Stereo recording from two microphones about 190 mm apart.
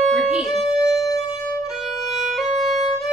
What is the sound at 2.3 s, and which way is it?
Music, centre (ahead or behind).